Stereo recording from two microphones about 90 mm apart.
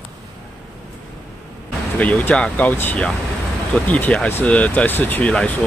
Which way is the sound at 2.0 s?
15° left (ahead or behind).